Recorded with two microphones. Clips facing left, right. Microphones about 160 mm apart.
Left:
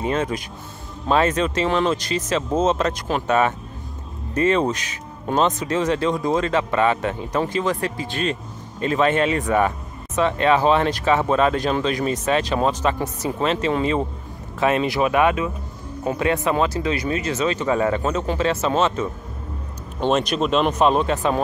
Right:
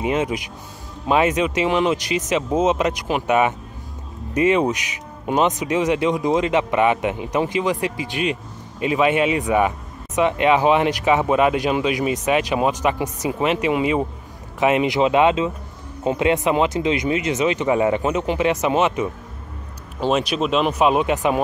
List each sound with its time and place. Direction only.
0.0 s speech: 15° right (ahead or behind)